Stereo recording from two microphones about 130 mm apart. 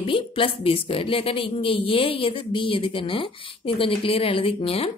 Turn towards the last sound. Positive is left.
turn(degrees=50)  # may be behind; listen again after turning